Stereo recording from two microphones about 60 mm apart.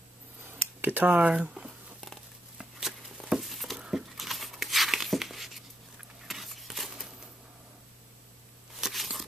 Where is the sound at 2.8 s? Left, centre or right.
Centre.